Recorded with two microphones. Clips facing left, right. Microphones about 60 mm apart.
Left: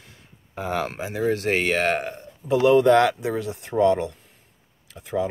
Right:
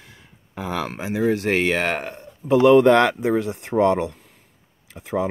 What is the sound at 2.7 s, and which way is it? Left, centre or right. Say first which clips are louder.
Speech: right 2 dB; right.